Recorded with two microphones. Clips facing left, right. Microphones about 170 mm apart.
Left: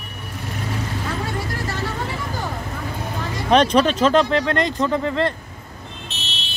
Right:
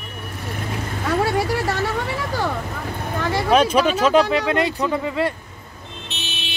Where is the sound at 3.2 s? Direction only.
75° right (ahead or behind).